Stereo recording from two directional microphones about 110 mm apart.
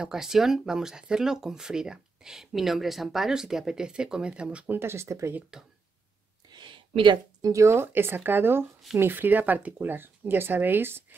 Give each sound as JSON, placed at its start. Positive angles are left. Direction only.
{"t": 0.0, "sound": "speech", "side_deg": -5}
{"t": 4.7, "sound": "speech", "side_deg": -25}
{"t": 5.5, "sound": "speech", "side_deg": -5}
{"t": 6.5, "sound": "a sound", "side_deg": -45}
{"t": 7.4, "sound": "speech", "side_deg": -25}